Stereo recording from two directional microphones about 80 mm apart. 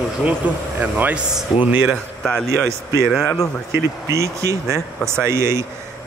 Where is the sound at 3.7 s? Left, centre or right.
Right.